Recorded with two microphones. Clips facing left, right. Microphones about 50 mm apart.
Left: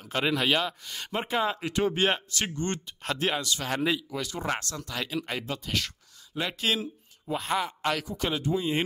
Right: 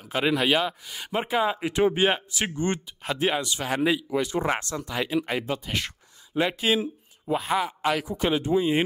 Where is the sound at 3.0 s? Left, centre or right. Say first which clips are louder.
Right 3 dB; centre.